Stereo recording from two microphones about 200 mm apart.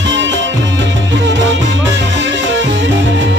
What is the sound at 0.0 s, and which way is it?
Music, 65° right (ahead or behind).